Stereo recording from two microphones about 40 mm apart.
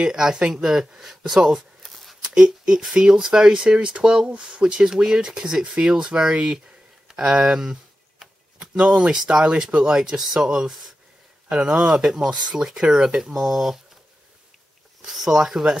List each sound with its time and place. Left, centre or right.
0.1 s speech: centre
1.8 s a sound: centre
2.2 s speech: centre
8.5 s a sound: right
8.9 s speech: centre
15.0 s speech: centre